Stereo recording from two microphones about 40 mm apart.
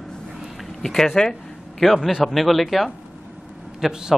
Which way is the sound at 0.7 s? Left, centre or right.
Centre.